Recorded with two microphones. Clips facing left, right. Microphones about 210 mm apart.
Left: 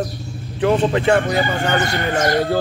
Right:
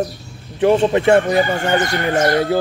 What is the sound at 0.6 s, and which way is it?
Speech, 25° right (ahead or behind).